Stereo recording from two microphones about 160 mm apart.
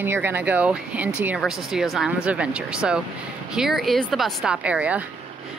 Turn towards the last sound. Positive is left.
turn(degrees=-10)  # may be behind; listen again after turning